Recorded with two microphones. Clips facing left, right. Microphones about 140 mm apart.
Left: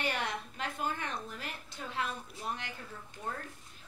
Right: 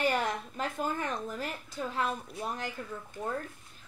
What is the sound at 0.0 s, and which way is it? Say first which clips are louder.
A woman's voice: right 6 dB; 40° right (ahead or behind).